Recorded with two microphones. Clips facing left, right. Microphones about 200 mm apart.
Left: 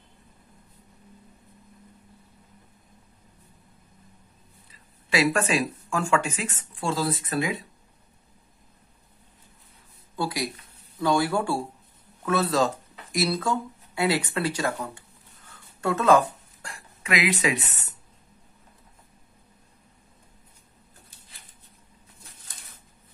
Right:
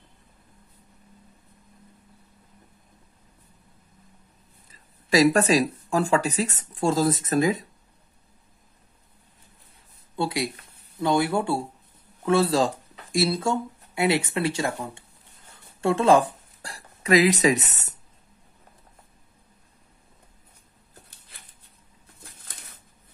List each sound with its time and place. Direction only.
4.6 s speech: 40° right (ahead or behind)
10.1 s speech: 25° right (ahead or behind)
15.5 s a sound: 25° right (ahead or behind)